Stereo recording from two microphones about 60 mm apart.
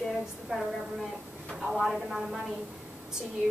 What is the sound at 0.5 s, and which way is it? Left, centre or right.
Speech, centre.